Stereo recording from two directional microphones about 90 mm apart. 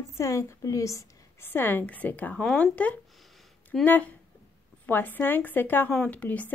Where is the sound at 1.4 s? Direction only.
25° left (ahead or behind).